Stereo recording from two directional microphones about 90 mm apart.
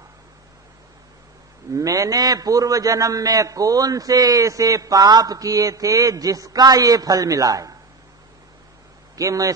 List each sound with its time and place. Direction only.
1.7 s a man's voice: 40° right (ahead or behind)
9.1 s a man's voice: 40° right (ahead or behind)